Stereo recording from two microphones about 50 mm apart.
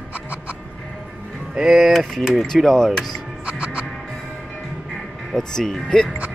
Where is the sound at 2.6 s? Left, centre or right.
Centre.